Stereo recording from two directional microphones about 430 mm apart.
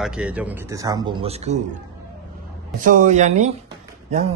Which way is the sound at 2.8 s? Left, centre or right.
Centre.